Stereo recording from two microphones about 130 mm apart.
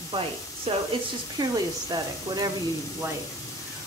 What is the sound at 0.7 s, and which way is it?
Speech, 50° right (ahead or behind).